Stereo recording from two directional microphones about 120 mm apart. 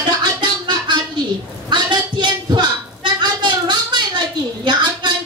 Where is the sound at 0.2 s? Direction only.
40° right (ahead or behind).